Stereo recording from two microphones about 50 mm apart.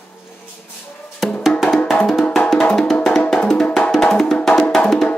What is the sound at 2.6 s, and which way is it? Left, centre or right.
Music, centre.